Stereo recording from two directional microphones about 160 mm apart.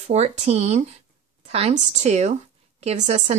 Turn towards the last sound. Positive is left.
turn(degrees=-45)  # may be behind; listen again after turning